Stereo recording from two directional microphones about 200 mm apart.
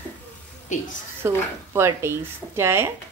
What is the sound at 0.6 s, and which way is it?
Speech, 40° left (ahead or behind).